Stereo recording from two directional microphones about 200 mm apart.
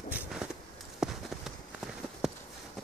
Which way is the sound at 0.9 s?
Centre (ahead or behind).